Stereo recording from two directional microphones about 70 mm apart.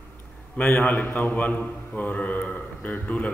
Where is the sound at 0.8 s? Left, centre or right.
Left.